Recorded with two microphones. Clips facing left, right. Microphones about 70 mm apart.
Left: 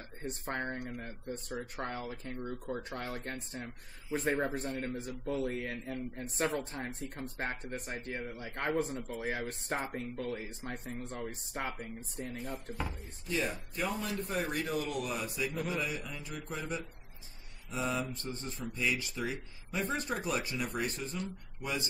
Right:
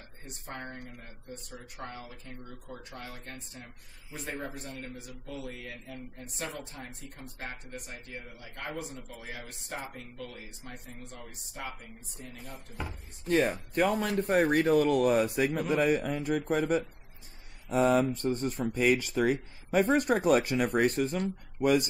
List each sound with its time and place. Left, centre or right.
0.2 s speech: left
13.3 s speech: right